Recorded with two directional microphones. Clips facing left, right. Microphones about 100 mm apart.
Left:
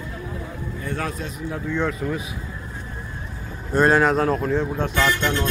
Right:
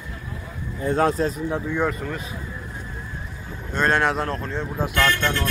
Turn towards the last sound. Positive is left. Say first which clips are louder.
# left 1 dB
turn(degrees=20)  # may be behind; listen again after turning